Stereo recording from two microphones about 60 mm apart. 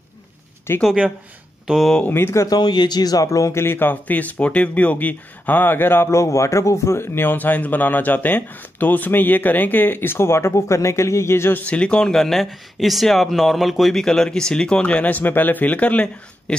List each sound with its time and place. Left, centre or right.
0.7 s a man's voice: left
1.7 s speech: centre
2.0 s speech: left
2.4 s speech: left
3.5 s speech: left
6.1 s a man's voice: left
11.6 s speech: left